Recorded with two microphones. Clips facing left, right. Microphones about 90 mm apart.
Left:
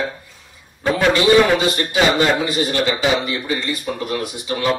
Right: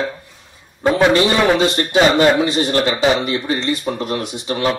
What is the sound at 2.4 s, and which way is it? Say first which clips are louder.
Speech: right 2 dB; 25° right (ahead or behind).